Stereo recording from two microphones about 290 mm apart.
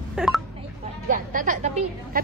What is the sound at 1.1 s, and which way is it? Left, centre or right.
A woman's voice, right.